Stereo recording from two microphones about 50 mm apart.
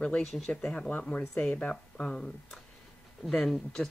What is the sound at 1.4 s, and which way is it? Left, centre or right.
Speech, left.